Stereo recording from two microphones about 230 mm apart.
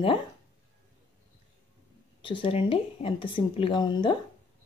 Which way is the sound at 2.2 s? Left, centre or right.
Left.